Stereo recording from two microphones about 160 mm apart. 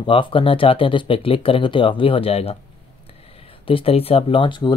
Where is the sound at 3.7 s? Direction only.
35° left (ahead or behind).